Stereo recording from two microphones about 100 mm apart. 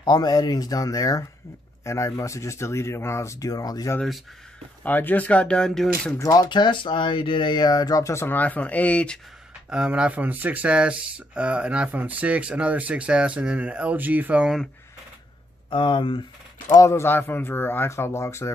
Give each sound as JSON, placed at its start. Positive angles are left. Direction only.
{"t": 0.0, "sound": "speech", "side_deg": 40}
{"t": 4.8, "sound": "speech", "side_deg": 15}
{"t": 6.1, "sound": "speech", "side_deg": 35}
{"t": 9.7, "sound": "speech", "side_deg": -10}
{"t": 15.7, "sound": "speech", "side_deg": 55}
{"t": 16.6, "sound": "speech", "side_deg": 30}